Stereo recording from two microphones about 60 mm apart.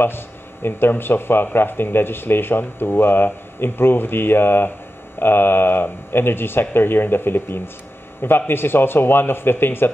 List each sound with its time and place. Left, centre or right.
0.0 s speech: left